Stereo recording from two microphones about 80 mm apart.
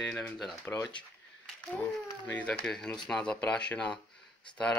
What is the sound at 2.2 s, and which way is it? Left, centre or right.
Speech, centre.